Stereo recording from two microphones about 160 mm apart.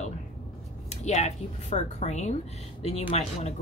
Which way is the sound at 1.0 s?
45° left (ahead or behind).